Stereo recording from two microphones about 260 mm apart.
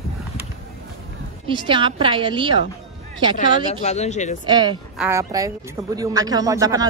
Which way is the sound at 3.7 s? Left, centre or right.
Left.